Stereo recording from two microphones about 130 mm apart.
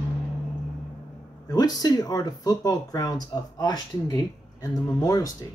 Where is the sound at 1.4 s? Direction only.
30° left (ahead or behind).